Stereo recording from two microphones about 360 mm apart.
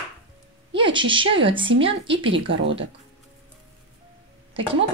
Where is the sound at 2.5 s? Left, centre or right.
Right.